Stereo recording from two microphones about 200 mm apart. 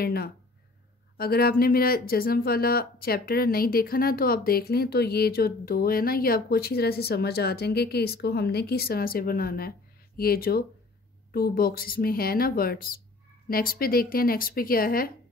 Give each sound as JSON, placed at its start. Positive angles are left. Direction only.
{"t": 0.0, "sound": "speech", "side_deg": 50}